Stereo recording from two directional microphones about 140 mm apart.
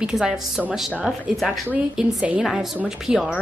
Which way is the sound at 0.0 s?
5° right (ahead or behind).